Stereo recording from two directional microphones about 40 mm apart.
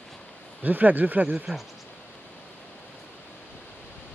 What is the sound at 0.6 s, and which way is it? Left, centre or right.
Speech, right.